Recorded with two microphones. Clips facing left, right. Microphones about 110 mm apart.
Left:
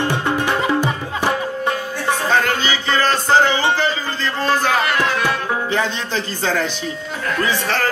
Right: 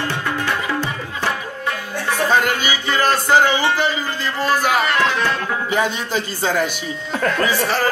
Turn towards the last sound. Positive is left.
turn(degrees=-10)  # may be behind; listen again after turning